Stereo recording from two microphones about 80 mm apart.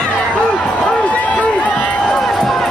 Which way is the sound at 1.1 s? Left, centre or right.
Centre.